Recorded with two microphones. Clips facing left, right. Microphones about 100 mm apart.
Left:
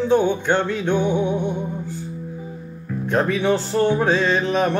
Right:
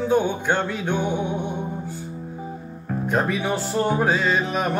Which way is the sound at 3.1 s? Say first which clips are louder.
Left 4 dB; 10° right (ahead or behind).